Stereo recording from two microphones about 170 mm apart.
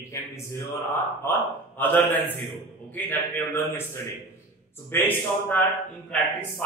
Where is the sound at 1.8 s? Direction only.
10° left (ahead or behind).